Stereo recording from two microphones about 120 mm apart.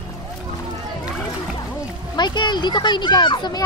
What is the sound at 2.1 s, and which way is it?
Speech, 40° left (ahead or behind).